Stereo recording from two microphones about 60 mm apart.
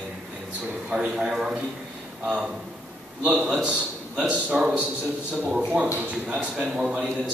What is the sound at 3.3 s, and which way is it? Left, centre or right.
Speech, right.